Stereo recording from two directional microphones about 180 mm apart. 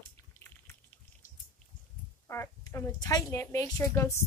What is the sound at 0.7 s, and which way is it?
Drip, 15° left (ahead or behind).